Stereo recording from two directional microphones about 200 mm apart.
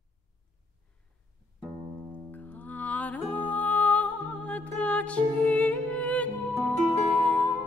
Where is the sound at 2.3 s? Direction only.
10° left (ahead or behind).